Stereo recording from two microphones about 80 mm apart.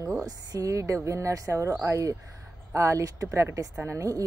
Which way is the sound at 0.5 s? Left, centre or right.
Right.